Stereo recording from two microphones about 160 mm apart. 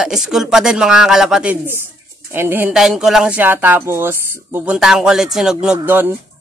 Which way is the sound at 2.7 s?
5° right (ahead or behind).